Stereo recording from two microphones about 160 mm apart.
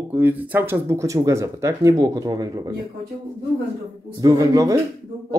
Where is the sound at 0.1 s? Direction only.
10° right (ahead or behind).